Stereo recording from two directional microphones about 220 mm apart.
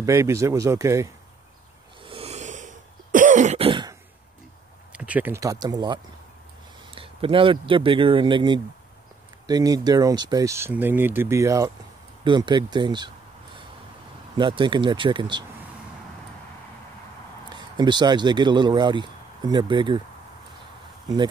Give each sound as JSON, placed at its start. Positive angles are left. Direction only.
{"t": 0.0, "sound": "speech", "side_deg": -15}
{"t": 2.0, "sound": "cough", "side_deg": -25}
{"t": 4.9, "sound": "speech", "side_deg": -5}
{"t": 7.0, "sound": "speech", "side_deg": -25}
{"t": 14.3, "sound": "speech", "side_deg": -20}
{"t": 17.5, "sound": "speech", "side_deg": -20}